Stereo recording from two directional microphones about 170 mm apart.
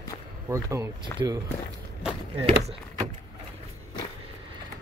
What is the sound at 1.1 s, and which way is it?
Speech, 15° left (ahead or behind).